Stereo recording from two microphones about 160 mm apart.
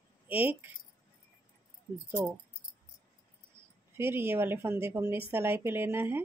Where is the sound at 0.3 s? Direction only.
10° right (ahead or behind).